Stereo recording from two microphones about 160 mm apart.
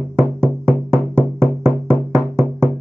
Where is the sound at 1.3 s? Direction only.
15° right (ahead or behind).